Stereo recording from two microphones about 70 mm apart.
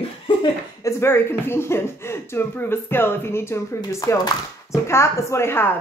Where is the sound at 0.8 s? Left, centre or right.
Left.